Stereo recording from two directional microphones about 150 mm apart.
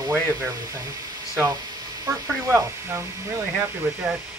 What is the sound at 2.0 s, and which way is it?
Speech, 20° right (ahead or behind).